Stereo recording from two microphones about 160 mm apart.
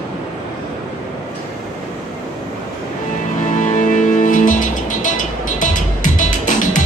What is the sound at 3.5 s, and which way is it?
Music, 50° left (ahead or behind).